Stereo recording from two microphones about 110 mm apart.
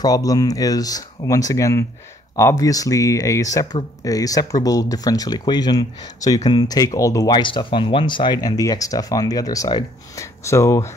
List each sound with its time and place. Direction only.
0.0 s speech: 35° left (ahead or behind)